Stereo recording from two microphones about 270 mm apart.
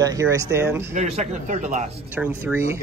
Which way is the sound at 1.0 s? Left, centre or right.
Right.